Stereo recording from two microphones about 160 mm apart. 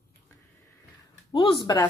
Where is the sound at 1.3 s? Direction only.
30° left (ahead or behind).